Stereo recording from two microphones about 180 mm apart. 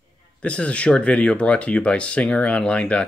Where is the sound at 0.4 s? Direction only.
5° left (ahead or behind).